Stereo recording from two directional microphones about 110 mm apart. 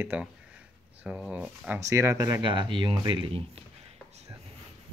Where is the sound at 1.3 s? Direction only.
10° right (ahead or behind).